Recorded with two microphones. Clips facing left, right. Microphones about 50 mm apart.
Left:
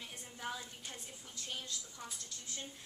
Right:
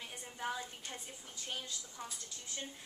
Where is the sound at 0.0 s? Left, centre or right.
Centre.